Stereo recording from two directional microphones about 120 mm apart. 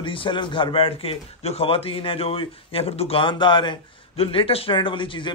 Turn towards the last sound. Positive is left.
turn(degrees=45)  # may be behind; listen again after turning